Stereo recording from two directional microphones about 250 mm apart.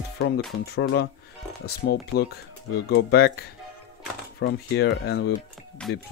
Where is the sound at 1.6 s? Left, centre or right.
Left.